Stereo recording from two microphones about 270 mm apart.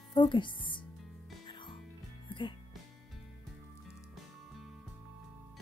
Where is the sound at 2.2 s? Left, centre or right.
Centre.